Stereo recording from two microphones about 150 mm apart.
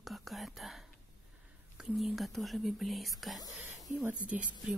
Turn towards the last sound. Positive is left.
turn(degrees=-10)  # may be behind; listen again after turning